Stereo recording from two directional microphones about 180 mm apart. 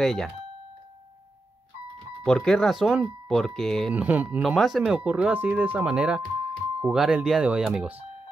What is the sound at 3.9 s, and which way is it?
Speech, 10° right (ahead or behind).